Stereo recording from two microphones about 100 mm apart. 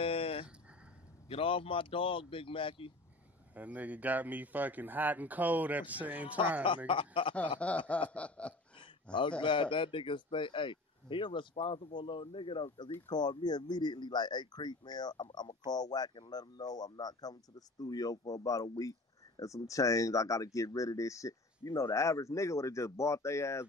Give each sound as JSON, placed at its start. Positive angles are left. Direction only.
{"t": 0.0, "sound": "a sound", "side_deg": 70}
{"t": 1.3, "sound": "speech", "side_deg": 65}
{"t": 3.5, "sound": "speech", "side_deg": -15}
{"t": 6.9, "sound": "speech", "side_deg": 60}
{"t": 7.6, "sound": "a sound", "side_deg": 15}
{"t": 9.4, "sound": "speech", "side_deg": 55}